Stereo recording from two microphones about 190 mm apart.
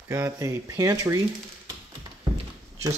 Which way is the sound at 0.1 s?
15° right (ahead or behind).